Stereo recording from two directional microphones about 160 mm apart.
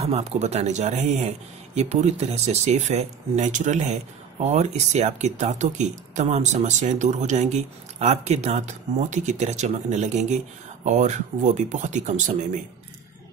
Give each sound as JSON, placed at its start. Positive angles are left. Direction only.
{"t": 0.0, "sound": "speech", "side_deg": -40}